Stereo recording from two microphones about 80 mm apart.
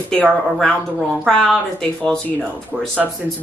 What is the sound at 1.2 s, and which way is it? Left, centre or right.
Speech, centre.